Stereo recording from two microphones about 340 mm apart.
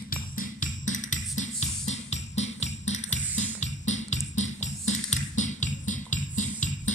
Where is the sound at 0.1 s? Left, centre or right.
Left.